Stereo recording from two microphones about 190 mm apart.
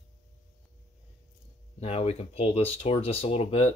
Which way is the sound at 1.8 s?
30° left (ahead or behind).